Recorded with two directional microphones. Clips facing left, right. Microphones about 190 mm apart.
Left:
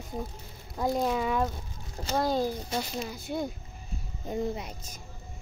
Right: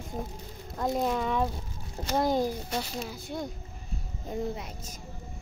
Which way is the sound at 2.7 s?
Centre (ahead or behind).